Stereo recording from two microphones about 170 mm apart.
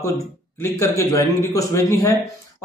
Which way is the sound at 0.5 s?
15° left (ahead or behind).